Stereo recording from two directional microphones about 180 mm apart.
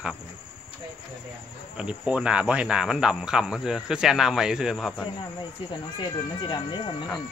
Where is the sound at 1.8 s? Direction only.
5° right (ahead or behind).